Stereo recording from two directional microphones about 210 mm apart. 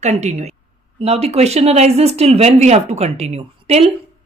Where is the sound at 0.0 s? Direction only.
30° right (ahead or behind).